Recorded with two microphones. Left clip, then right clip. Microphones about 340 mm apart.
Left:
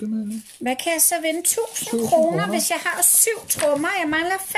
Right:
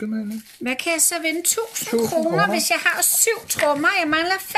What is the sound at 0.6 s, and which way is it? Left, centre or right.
Speech, centre.